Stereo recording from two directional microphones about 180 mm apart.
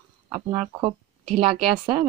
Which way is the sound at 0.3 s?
25° right (ahead or behind).